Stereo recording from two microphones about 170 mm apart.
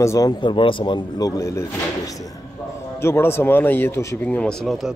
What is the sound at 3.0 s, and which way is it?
Speech, 15° left (ahead or behind).